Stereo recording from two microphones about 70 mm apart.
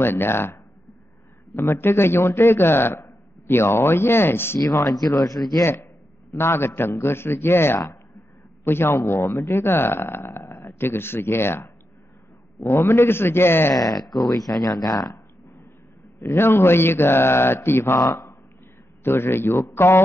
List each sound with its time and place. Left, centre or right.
0.0 s speech: left
4.6 s speech: left
5.6 s speech: left
13.7 s speech: left
16.2 s speech: left
18.0 s speech: left
19.0 s speech: left